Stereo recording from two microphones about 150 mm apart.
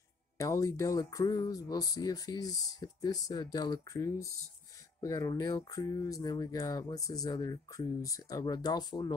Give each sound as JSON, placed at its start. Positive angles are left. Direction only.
{"t": 0.4, "sound": "speech", "side_deg": 20}